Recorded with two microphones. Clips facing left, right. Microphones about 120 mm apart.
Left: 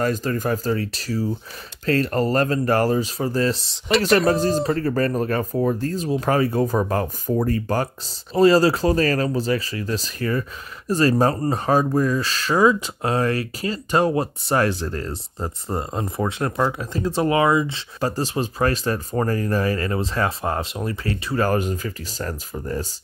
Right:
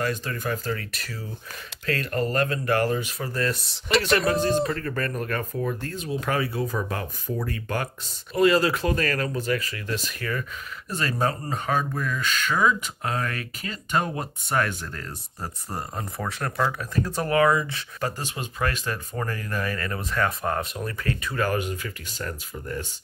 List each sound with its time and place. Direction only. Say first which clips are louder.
0.0 s speech: left 6 dB; 40° left (ahead or behind)
4.3 s speech: left 3 dB; 35° left (ahead or behind)